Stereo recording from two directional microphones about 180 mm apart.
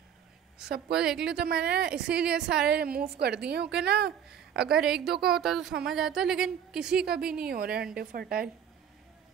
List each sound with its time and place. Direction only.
0.7 s a woman's voice: 65° right (ahead or behind)
0.9 s a woman's voice: 5° right (ahead or behind)
1.2 s a woman's voice: 60° right (ahead or behind)
1.9 s a woman's voice: 5° right (ahead or behind)
2.7 s a woman's voice: 60° right (ahead or behind)
4.3 s a woman's voice: 5° right (ahead or behind)
7.3 s a woman's voice: 55° right (ahead or behind)